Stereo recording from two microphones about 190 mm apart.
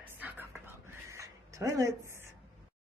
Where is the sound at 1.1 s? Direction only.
15° right (ahead or behind).